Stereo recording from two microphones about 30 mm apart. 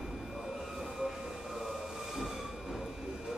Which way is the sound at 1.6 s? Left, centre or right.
Centre.